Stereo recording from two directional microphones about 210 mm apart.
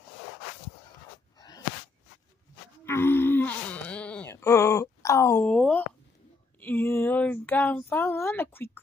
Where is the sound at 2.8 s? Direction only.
10° left (ahead or behind).